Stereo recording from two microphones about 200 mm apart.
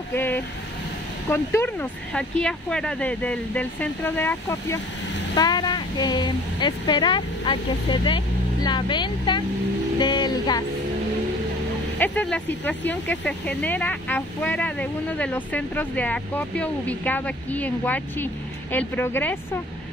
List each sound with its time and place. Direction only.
0.1 s a woman's voice: 10° left (ahead or behind)
12.0 s speech: 10° left (ahead or behind)